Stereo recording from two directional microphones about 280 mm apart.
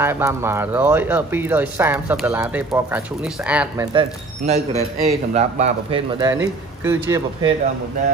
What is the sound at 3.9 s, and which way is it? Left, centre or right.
A man's voice, centre.